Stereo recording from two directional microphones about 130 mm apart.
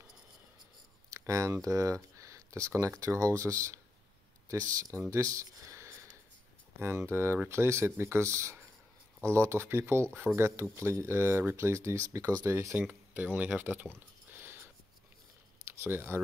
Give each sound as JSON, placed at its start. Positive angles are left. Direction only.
{"t": 1.1, "sound": "speech", "side_deg": -25}
{"t": 14.3, "sound": "a sound", "side_deg": -15}
{"t": 15.6, "sound": "speech", "side_deg": -20}